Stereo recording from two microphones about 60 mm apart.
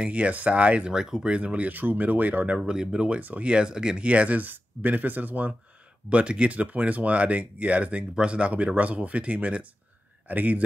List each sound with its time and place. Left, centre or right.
0.0 s speech: right
2.7 s speech: centre
3.2 s speech: right